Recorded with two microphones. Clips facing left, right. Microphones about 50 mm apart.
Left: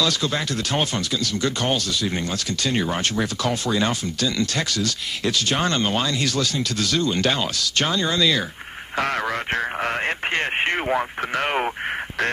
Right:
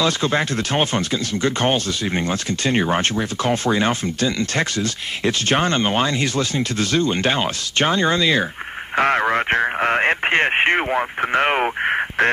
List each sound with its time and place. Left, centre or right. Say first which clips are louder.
0.0 s speech: right 4 dB; right